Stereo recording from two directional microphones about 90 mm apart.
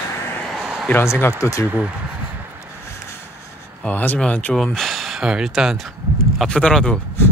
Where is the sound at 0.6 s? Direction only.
5° right (ahead or behind).